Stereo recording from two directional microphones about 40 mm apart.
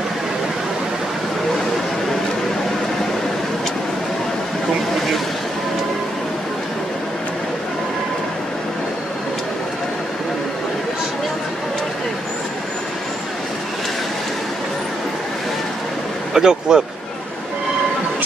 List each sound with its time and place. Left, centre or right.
16.3 s speech: centre